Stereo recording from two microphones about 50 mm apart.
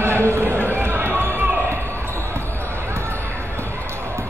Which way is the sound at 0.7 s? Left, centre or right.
Right.